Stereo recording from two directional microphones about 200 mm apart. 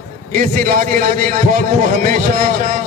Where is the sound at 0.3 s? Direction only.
45° right (ahead or behind).